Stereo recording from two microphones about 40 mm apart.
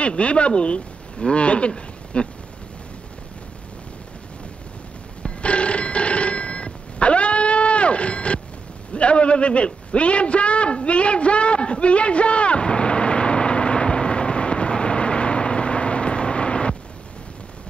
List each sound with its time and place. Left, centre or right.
0.0 s speech: left
5.4 s telephone bell ringing: left
8.9 s a sound: left